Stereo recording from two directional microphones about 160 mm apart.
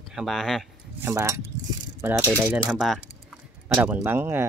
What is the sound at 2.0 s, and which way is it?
Rattle, 15° right (ahead or behind).